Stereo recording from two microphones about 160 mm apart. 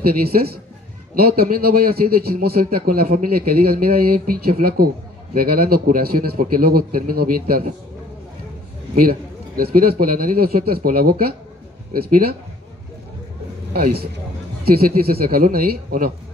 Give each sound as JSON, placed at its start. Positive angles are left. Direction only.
{"t": 0.0, "sound": "a man's voice", "side_deg": -70}
{"t": 9.6, "sound": "a man's voice", "side_deg": -70}
{"t": 13.7, "sound": "a man's voice", "side_deg": -70}